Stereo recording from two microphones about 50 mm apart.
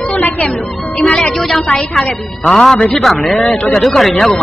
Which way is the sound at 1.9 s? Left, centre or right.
Centre.